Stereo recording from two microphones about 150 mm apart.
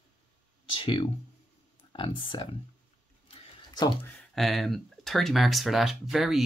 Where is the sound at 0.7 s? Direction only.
35° left (ahead or behind).